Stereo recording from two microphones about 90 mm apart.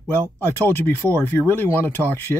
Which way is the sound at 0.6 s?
25° left (ahead or behind).